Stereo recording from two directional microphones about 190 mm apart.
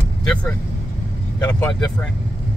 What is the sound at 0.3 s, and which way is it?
Vehicle, 5° left (ahead or behind).